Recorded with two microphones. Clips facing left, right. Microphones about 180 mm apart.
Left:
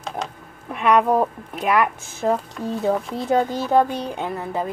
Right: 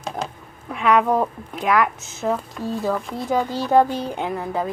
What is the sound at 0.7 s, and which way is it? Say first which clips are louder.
Speech: left 1 dB; 10° left (ahead or behind).